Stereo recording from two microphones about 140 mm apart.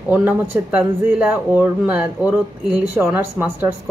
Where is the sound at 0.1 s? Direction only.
10° right (ahead or behind).